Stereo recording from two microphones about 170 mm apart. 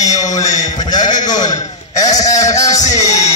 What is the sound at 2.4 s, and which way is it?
Speech, 20° left (ahead or behind).